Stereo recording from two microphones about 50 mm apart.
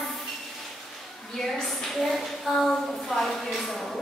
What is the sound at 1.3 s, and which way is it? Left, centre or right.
A woman's voice, centre.